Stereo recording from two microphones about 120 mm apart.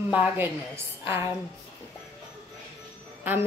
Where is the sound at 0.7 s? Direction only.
20° right (ahead or behind).